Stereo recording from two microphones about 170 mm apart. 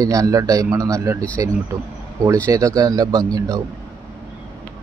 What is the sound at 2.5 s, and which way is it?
Speech, 20° right (ahead or behind).